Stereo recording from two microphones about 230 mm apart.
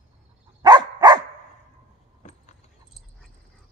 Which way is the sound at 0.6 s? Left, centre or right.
Centre.